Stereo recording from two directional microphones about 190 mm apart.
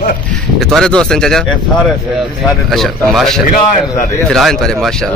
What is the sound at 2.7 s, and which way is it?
A man's voice, centre (ahead or behind).